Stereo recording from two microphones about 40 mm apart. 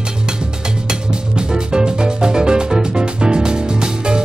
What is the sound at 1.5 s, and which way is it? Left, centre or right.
Music, centre.